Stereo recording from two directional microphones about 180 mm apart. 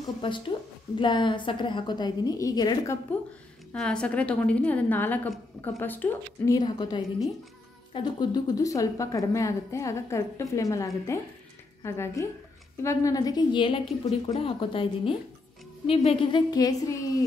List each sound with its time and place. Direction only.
0.2 s a woman's voice: 25° left (ahead or behind)
3.7 s a woman's voice: 5° left (ahead or behind); by 17.2 s 20° left (ahead or behind)